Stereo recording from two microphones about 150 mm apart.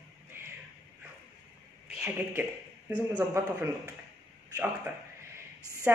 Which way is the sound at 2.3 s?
10° right (ahead or behind).